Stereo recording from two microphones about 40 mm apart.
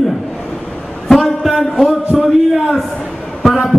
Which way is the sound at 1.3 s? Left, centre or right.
Centre.